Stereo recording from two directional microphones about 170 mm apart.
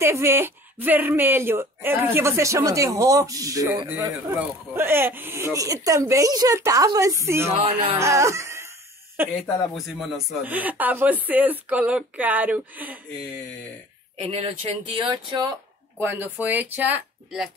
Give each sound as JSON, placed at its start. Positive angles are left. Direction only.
{"t": 0.0, "sound": "speech", "side_deg": -15}
{"t": 9.8, "sound": "speech", "side_deg": 0}
{"t": 14.1, "sound": "speech", "side_deg": -35}
{"t": 16.0, "sound": "speech", "side_deg": -10}